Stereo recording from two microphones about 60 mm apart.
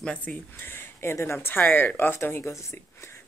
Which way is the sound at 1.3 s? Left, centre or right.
Left.